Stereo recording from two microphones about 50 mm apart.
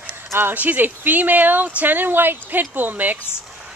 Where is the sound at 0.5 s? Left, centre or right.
Right.